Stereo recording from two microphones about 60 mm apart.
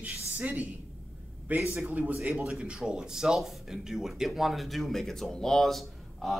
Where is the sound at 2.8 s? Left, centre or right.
Centre.